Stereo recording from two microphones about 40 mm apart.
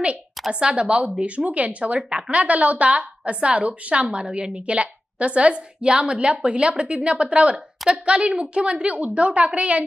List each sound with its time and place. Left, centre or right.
0.5 s a woman's voice: right
2.0 s a woman's voice: centre